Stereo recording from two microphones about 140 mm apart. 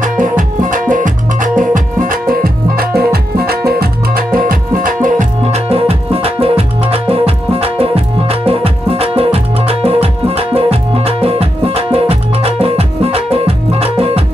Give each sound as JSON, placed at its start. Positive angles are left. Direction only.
{"t": 0.0, "sound": "music", "side_deg": -70}
{"t": 1.7, "sound": "music", "side_deg": -85}
{"t": 5.5, "sound": "music", "side_deg": -45}